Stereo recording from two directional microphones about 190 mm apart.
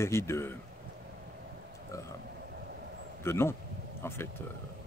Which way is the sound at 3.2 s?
15° left (ahead or behind).